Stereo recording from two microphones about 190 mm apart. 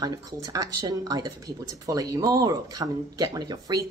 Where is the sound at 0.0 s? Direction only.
20° right (ahead or behind).